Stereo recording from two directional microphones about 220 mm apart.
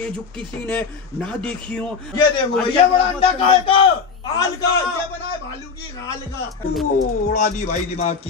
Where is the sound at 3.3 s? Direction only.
25° left (ahead or behind).